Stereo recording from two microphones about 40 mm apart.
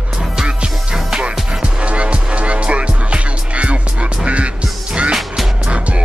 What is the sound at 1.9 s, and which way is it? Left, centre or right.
Music, right.